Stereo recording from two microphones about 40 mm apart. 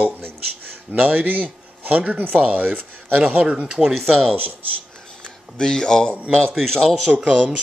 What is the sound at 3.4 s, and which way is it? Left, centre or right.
Speech, centre.